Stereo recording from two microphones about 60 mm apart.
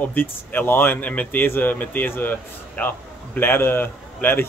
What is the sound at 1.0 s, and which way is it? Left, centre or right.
Speech, left.